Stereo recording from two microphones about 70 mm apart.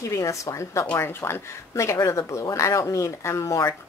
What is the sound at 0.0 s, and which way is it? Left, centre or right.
Speech, left.